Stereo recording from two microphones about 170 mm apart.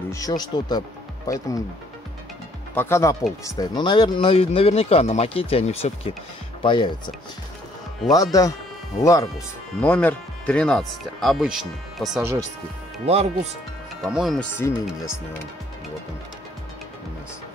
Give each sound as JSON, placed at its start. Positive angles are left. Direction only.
{"t": 0.1, "sound": "speech", "side_deg": 20}
{"t": 2.7, "sound": "speech", "side_deg": 15}
{"t": 8.1, "sound": "speech", "side_deg": 20}
{"t": 9.8, "sound": "speech", "side_deg": 5}
{"t": 13.0, "sound": "speech", "side_deg": -40}
{"t": 14.0, "sound": "speech", "side_deg": 0}
{"t": 14.6, "sound": "speech", "side_deg": 15}